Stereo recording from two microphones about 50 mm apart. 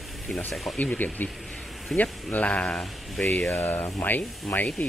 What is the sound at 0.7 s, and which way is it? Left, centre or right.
Speech, left.